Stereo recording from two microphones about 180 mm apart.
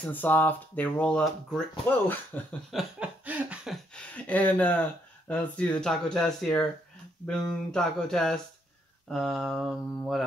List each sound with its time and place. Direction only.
0.0 s speech: 10° left (ahead or behind)
2.7 s speech: 5° right (ahead or behind)